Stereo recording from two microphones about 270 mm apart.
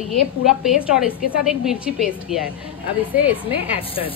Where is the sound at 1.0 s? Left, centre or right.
Left.